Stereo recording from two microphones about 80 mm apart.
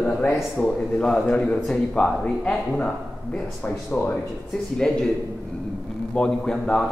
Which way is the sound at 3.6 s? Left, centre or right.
Left.